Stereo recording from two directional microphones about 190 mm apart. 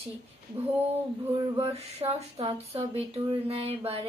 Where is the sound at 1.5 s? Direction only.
30° right (ahead or behind).